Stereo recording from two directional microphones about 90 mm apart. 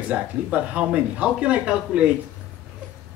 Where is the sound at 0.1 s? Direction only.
15° right (ahead or behind).